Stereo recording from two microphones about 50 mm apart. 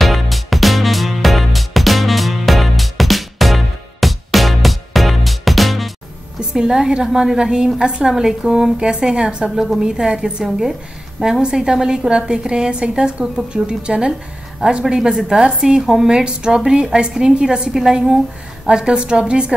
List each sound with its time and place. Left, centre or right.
0.0 s music: centre
6.5 s a woman's voice: centre